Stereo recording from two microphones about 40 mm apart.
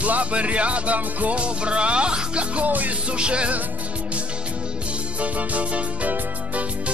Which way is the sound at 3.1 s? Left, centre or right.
Right.